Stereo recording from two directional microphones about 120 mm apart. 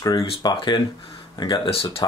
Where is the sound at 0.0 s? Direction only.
30° left (ahead or behind).